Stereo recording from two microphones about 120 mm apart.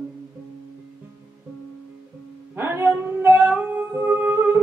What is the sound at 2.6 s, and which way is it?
Music, 20° right (ahead or behind).